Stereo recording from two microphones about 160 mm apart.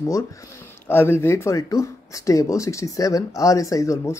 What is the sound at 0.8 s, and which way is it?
Speech, 15° left (ahead or behind).